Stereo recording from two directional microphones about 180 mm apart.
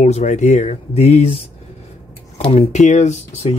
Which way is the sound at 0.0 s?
40° left (ahead or behind).